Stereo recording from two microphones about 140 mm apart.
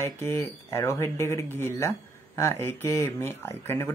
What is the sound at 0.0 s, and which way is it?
Speech, 20° left (ahead or behind).